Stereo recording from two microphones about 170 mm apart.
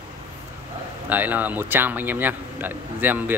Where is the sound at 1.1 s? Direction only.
10° right (ahead or behind).